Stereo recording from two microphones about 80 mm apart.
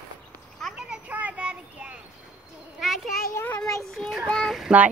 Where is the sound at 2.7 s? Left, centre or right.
Centre.